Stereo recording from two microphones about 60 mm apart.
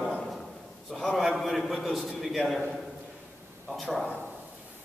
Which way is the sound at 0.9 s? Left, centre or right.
Centre.